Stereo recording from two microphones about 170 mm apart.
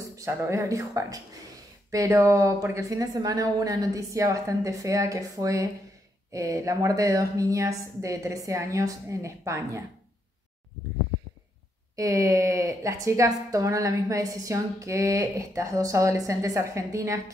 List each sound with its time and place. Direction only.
0.1 s a woman's voice: 15° right (ahead or behind)
11.9 s a woman's voice: 20° right (ahead or behind)